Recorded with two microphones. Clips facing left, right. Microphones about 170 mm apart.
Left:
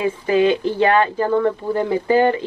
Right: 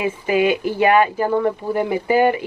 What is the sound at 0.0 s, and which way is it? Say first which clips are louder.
Speech: left 2 dB; 15° right (ahead or behind).